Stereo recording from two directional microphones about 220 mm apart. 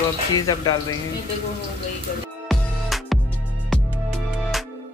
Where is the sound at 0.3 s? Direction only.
15° left (ahead or behind).